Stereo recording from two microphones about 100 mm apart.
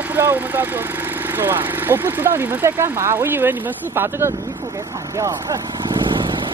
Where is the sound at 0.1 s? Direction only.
20° right (ahead or behind).